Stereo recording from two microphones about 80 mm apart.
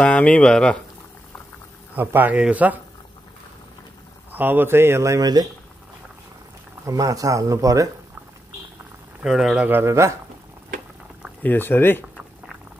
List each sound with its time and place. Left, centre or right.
0.0 s speech: centre
2.0 s speech: right
4.3 s speech: right
6.9 s speech: right
9.2 s speech: centre
9.7 s speech: right
11.4 s speech: left